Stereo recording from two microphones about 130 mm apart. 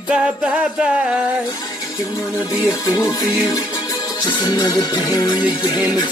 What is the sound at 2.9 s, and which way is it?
Music, 30° left (ahead or behind).